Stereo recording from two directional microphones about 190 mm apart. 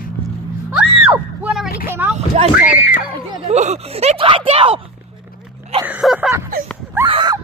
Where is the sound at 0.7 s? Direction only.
5° right (ahead or behind).